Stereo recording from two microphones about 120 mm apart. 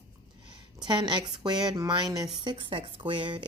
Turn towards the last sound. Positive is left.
turn(degrees=-45)  # may be behind; listen again after turning